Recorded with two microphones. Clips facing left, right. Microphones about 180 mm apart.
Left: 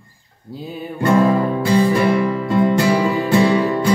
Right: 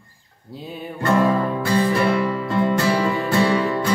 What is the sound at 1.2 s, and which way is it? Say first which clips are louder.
Music: left 3 dB; 10° left (ahead or behind).